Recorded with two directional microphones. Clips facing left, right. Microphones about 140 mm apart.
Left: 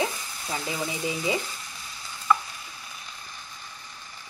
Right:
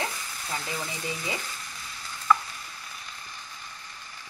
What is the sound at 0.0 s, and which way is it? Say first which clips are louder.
Frying: left 5 dB; 15° left (ahead or behind).